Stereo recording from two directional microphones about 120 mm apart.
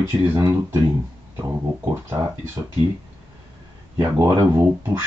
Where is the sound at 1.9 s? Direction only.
20° right (ahead or behind).